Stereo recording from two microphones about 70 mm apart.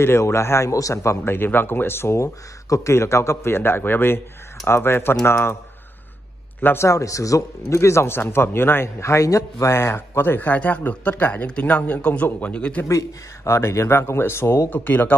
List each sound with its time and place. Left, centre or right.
0.0 s speech: left
6.6 s speech: left
6.9 s speech: left; by 12.8 s centre
12.8 s speech: left
14.7 s speech: left